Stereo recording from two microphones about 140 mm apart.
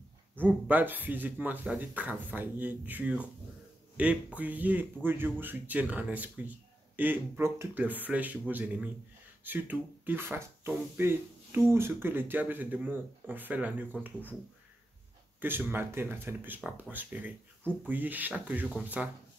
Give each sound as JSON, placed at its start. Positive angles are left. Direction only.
{"t": 0.4, "sound": "speech", "side_deg": -10}
{"t": 15.4, "sound": "speech", "side_deg": -15}